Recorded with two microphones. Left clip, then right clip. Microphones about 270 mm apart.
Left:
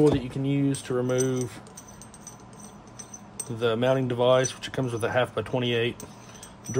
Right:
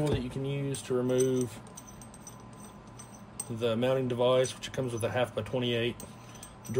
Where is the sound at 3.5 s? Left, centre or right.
Left.